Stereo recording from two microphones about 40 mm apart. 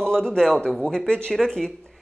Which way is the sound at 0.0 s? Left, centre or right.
Left.